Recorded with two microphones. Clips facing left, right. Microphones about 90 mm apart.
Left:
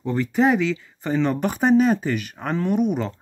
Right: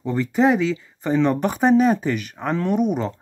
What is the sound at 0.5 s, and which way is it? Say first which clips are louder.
Speech: right 1 dB; 35° right (ahead or behind).